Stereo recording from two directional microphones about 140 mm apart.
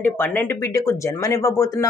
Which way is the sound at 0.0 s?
15° left (ahead or behind).